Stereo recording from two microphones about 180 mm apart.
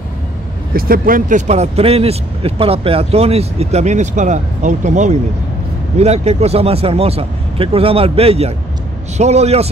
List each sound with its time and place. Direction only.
0.7 s speech: 55° right (ahead or behind); by 9.7 s 35° right (ahead or behind)